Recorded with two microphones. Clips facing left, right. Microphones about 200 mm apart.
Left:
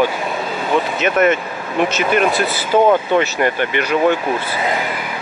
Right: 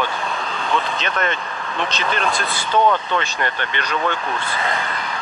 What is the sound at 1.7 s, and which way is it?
Speech, 10° left (ahead or behind).